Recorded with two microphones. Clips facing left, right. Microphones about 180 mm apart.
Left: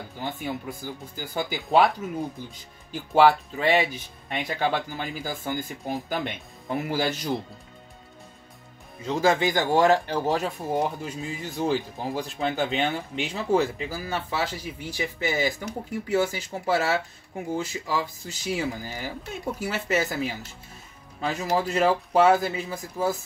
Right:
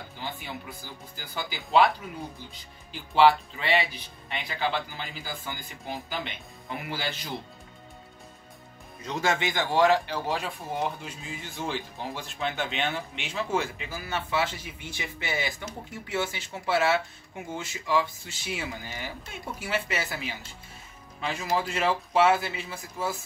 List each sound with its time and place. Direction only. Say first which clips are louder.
0.2 s speech: left 6 dB; 45° left (ahead or behind)
2.9 s speech: left 2 dB; 45° left (ahead or behind)
9.0 s speech: left 6 dB; 30° left (ahead or behind)